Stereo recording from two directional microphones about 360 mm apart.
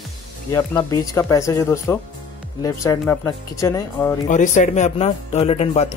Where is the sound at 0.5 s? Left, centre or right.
Centre.